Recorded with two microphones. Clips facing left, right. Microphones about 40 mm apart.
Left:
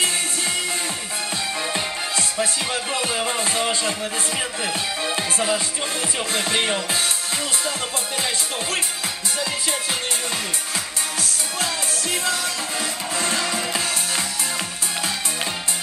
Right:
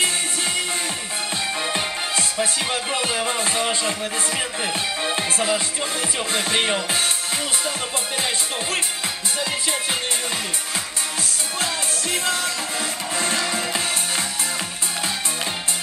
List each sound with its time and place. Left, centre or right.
1.7 s music: right
4.6 s music: centre
11.6 s music: right